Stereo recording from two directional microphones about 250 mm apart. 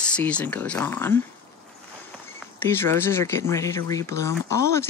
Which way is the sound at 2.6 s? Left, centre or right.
Centre.